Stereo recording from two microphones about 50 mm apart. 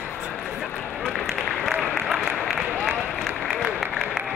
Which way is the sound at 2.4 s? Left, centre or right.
Centre.